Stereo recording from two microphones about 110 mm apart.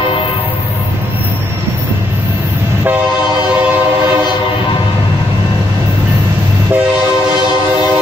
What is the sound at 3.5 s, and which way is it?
Train, 15° right (ahead or behind).